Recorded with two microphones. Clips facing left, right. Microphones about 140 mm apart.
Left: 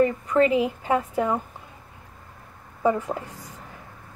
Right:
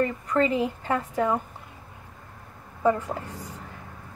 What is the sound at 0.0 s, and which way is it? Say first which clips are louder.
A woman's voice: left 4 dB; 10° left (ahead or behind).